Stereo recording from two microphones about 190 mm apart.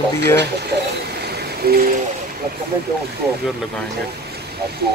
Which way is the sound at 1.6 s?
55° right (ahead or behind).